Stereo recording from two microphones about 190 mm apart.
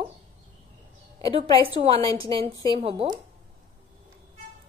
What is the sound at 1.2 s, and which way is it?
A woman's voice, 30° right (ahead or behind).